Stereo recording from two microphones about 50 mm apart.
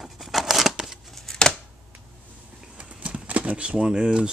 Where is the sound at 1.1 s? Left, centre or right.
Centre.